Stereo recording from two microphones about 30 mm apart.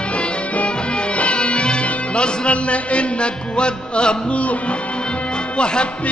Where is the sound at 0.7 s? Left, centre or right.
Left.